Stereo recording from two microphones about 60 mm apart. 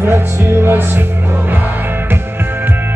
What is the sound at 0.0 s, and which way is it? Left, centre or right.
Music, right.